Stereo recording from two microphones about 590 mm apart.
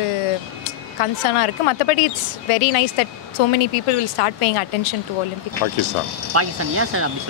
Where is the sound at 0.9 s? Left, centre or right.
Left.